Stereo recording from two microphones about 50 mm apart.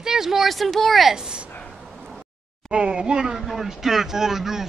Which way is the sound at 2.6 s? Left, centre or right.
Centre.